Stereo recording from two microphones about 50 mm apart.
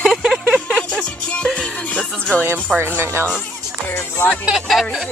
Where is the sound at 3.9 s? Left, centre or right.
Left.